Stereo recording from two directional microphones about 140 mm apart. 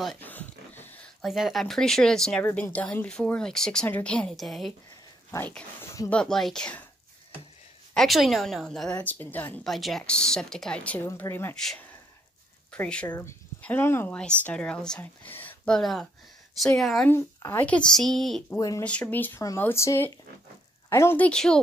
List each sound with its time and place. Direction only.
0.2 s a sound: 15° left (ahead or behind)
1.2 s a woman's voice: centre (ahead or behind)
7.9 s a woman's voice: centre (ahead or behind)
9.7 s a woman's voice: centre (ahead or behind); by 11.5 s 15° left (ahead or behind)
11.5 s a woman's voice: 5° left (ahead or behind)
17.1 s speech: 15° left (ahead or behind)
18.6 s speech: 25° left (ahead or behind)
18.9 s speech: 10° left (ahead or behind)